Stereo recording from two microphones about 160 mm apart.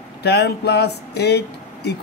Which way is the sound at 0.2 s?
90° left.